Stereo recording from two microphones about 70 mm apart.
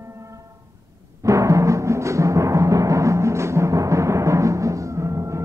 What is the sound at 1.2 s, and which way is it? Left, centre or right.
Music, right.